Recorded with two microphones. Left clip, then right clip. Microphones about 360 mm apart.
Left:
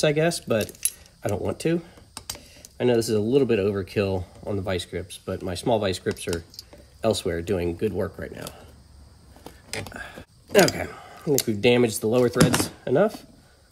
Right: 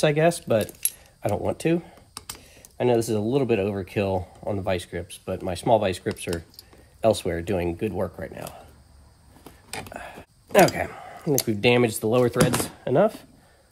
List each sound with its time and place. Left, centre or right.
0.0 s speech: centre
9.9 s speech: centre